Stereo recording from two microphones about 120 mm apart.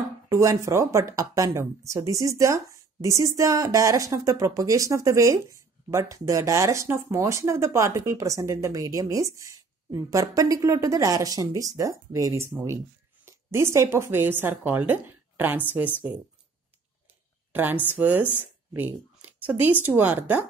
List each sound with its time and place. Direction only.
0.3 s a woman's voice: 25° right (ahead or behind)
17.5 s speech: 15° right (ahead or behind)